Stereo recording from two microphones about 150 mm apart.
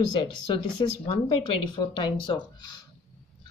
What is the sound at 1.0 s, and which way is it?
Speech, 35° left (ahead or behind).